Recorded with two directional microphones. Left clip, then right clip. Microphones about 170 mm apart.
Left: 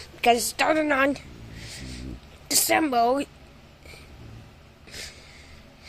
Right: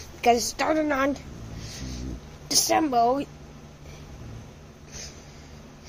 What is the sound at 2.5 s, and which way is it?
Speech, 15° left (ahead or behind).